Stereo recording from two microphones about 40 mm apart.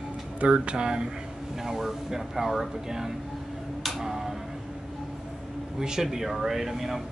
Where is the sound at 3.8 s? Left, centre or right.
Centre.